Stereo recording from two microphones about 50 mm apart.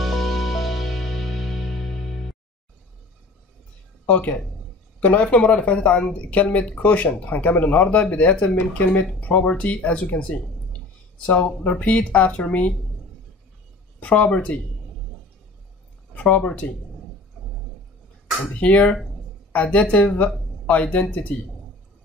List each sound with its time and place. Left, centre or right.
0.0 s music: centre
4.0 s a sound: left
5.0 s speech: left
13.9 s speech: left
16.2 s speech: left
18.5 s speech: left